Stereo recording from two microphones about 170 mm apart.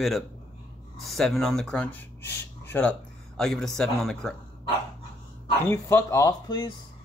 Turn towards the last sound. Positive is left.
turn(degrees=25)  # may be behind; listen again after turning